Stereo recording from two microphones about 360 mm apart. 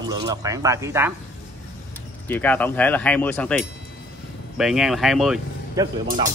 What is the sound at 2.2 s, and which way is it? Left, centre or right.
Speech, centre.